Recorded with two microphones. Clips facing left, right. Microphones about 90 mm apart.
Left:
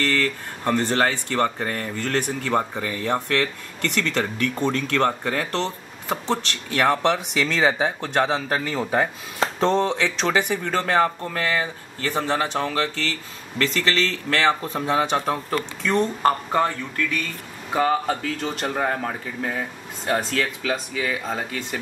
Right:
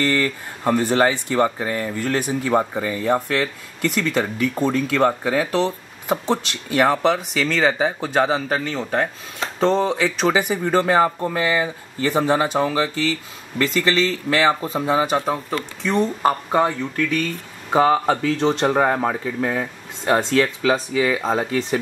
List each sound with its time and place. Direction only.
0.0 s speech: 15° right (ahead or behind)
18.0 s speech: 25° right (ahead or behind)
19.0 s speech: 45° right (ahead or behind)
20.1 s speech: 25° right (ahead or behind)